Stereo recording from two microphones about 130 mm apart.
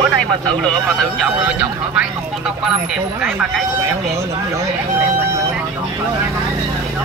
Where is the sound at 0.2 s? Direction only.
5° left (ahead or behind).